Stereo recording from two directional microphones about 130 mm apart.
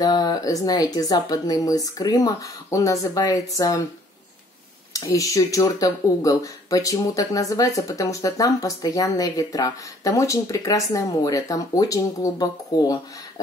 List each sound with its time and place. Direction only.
0.0 s speech: 30° left (ahead or behind)
4.9 s speech: 25° left (ahead or behind)